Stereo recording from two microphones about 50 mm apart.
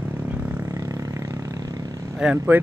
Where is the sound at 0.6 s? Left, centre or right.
Right.